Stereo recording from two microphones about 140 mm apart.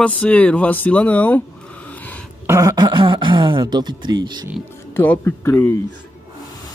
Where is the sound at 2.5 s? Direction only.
25° right (ahead or behind).